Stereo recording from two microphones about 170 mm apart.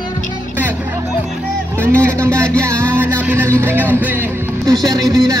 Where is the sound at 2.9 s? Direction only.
15° right (ahead or behind).